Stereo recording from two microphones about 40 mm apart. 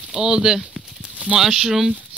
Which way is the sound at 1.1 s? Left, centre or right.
Right.